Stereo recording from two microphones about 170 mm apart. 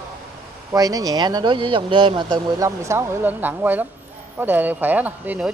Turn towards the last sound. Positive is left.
turn(degrees=-10)  # may be behind; listen again after turning